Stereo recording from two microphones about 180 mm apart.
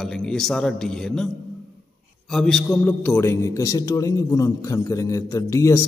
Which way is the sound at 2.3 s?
Centre (ahead or behind).